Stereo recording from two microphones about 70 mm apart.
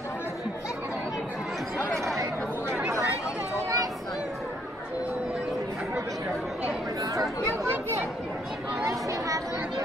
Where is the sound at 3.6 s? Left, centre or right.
Right.